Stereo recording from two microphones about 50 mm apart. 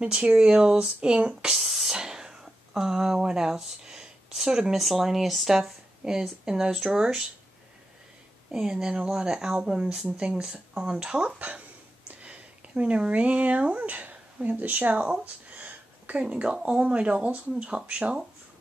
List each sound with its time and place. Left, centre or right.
0.0 s speech: right
1.6 s speech: centre
4.7 s speech: centre
8.5 s speech: centre; by 15.0 s right
15.2 s a sound: right
16.8 s speech: right